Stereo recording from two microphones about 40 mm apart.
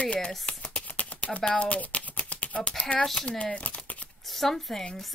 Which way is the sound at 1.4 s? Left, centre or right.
Left.